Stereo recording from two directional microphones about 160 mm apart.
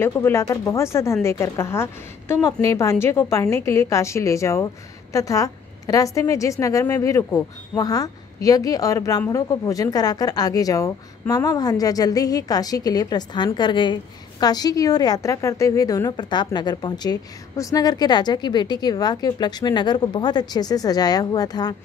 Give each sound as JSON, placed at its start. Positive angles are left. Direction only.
{"t": 0.0, "sound": "a woman's voice", "side_deg": 15}